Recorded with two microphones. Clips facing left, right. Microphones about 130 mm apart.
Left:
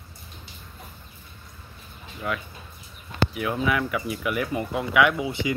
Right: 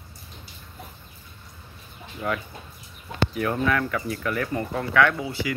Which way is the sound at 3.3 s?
5° left (ahead or behind).